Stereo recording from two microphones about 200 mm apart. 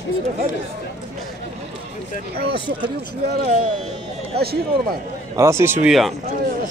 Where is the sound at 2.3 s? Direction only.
55° right (ahead or behind).